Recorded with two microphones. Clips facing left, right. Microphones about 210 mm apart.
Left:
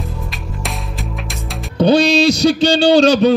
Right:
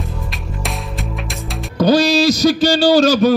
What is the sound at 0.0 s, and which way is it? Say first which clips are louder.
Music: even; centre (ahead or behind).